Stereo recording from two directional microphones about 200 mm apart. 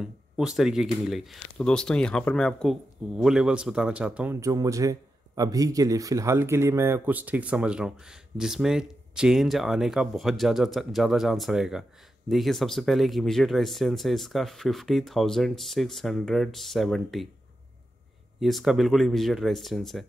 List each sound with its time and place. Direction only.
0.0 s speech: 5° right (ahead or behind)
18.4 s speech: centre (ahead or behind)